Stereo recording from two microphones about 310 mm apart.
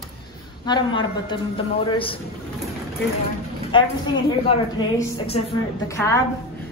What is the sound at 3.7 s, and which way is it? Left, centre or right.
A woman's voice, centre.